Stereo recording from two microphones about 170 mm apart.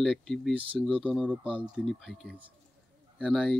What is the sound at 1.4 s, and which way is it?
Speech, 30° right (ahead or behind).